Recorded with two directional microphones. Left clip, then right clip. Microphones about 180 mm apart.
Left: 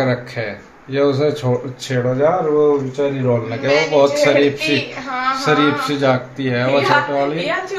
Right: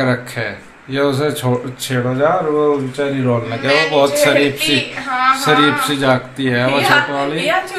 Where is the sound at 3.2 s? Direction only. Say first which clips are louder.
Right 2 dB; 10° right (ahead or behind).